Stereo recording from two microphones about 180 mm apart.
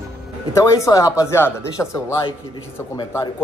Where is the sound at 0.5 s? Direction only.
15° left (ahead or behind).